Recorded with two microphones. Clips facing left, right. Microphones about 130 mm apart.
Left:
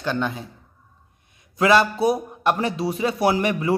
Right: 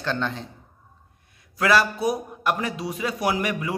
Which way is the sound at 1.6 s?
25° left (ahead or behind).